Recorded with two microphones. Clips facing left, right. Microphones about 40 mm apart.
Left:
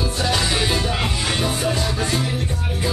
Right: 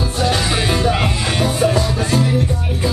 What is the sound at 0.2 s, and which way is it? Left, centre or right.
Music, right.